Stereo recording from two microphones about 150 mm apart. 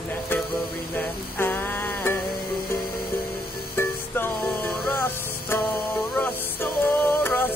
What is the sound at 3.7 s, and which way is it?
Music, 15° left (ahead or behind).